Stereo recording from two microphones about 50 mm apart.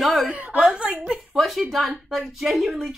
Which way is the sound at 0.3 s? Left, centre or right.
Right.